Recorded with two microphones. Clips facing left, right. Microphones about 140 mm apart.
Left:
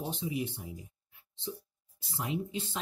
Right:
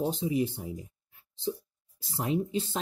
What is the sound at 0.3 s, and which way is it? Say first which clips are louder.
Speech: right 7 dB; 35° right (ahead or behind).